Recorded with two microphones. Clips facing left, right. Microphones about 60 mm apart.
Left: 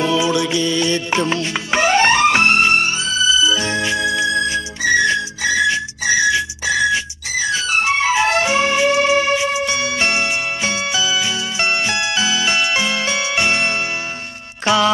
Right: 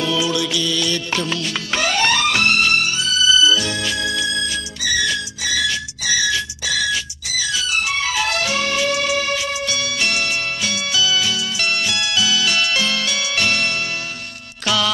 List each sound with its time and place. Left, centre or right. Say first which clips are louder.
0.0 s music: left 3 dB; left